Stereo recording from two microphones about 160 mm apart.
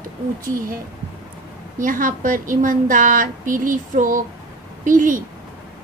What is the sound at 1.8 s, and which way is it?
A woman's voice, 55° right (ahead or behind).